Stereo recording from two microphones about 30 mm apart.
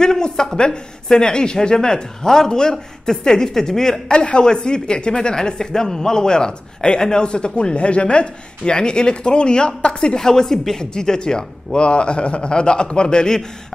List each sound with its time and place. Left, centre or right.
0.0 s speech: left
2.2 s speech: centre
4.1 s a man's voice: left
10.1 s a man's voice: centre